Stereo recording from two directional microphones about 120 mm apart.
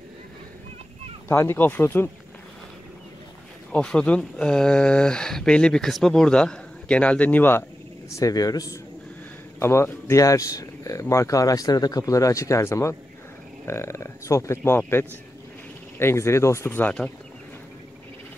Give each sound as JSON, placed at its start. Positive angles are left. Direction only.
{"t": 1.3, "sound": "speech", "side_deg": 20}
{"t": 3.7, "sound": "speech", "side_deg": 10}
{"t": 8.1, "sound": "speech", "side_deg": 30}